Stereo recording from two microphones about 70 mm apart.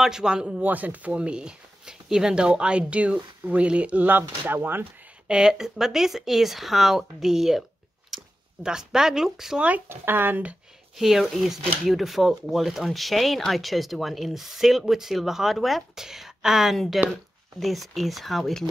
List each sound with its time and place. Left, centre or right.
0.0 s speech: centre
0.6 s speech: right
5.3 s speech: centre
8.6 s speech: centre
9.8 s speech: right
11.0 s speech: centre